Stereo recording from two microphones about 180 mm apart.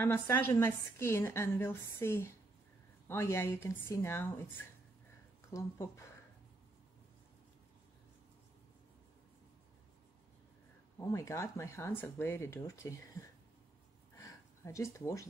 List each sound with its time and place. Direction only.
0.0 s a woman's voice: 10° left (ahead or behind)
11.1 s a woman's voice: 15° left (ahead or behind)
14.1 s a sound: 15° left (ahead or behind)